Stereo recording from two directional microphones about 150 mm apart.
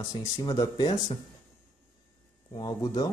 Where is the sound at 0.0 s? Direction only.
25° left (ahead or behind).